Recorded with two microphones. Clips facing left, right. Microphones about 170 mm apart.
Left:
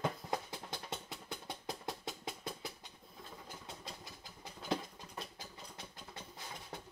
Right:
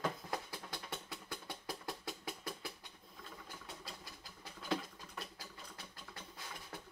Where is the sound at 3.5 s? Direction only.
20° left (ahead or behind).